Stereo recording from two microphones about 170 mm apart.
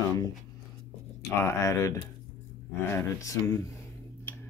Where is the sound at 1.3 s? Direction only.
15° left (ahead or behind).